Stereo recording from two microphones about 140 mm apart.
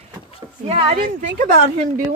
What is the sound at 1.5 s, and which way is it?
Speech, 80° right.